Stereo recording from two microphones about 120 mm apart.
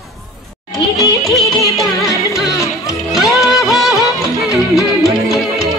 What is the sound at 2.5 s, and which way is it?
Music, 25° left (ahead or behind).